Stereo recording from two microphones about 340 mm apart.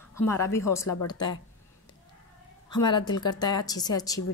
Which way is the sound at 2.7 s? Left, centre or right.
Centre.